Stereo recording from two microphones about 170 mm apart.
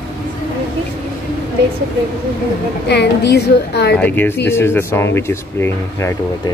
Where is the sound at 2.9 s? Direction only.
75° left (ahead or behind).